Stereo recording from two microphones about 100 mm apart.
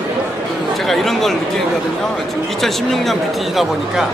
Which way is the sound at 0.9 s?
Centre (ahead or behind).